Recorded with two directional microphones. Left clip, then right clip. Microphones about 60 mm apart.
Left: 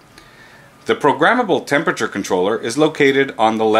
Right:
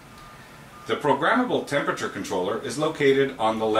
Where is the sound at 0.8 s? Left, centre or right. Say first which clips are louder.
Left 8 dB; left.